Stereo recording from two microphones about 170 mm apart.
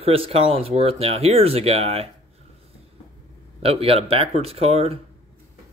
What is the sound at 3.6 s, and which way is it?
Speech, 35° right (ahead or behind).